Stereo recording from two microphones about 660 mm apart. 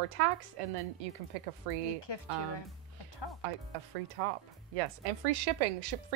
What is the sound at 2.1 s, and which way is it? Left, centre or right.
Speech, left.